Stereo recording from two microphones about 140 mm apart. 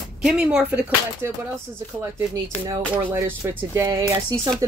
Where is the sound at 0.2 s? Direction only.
5° right (ahead or behind).